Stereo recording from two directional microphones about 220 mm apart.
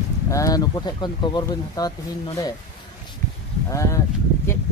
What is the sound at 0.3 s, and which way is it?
Speech, 15° left (ahead or behind).